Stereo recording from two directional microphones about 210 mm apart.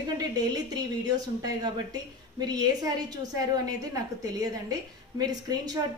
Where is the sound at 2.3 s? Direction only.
20° right (ahead or behind).